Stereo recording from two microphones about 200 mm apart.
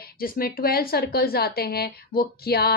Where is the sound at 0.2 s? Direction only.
45° left (ahead or behind).